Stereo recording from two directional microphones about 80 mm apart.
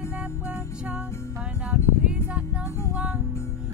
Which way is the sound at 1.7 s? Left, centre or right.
Centre.